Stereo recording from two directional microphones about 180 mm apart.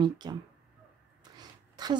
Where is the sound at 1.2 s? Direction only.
25° right (ahead or behind).